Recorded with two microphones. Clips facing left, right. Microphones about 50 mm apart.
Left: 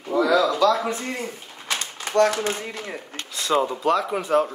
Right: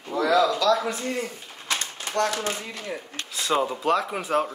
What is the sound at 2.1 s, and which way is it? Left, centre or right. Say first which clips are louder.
Speech: left 6 dB; left.